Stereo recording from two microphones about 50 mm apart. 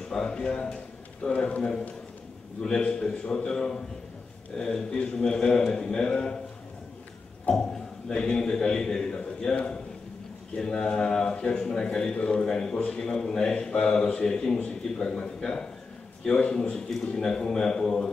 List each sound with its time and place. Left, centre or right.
0.1 s a man's voice: centre
3.0 s a man's voice: centre
7.4 s a man's voice: centre